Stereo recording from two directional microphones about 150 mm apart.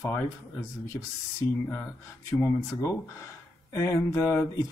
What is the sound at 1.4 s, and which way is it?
Speech, 15° left (ahead or behind).